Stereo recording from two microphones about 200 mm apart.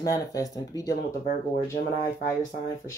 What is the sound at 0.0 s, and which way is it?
Speech, 15° left (ahead or behind).